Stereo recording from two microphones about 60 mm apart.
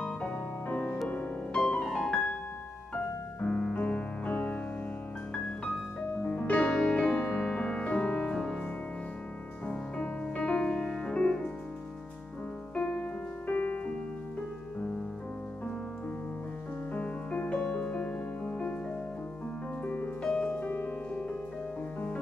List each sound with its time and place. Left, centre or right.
0.0 s music: centre
1.6 s piano: centre
3.4 s music: centre
3.7 s music: left
6.1 s music: left
9.7 s music: centre
12.7 s music: centre
16.9 s music: left
19.8 s music: left